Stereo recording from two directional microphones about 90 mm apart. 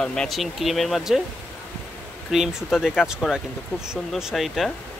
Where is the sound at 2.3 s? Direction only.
5° right (ahead or behind).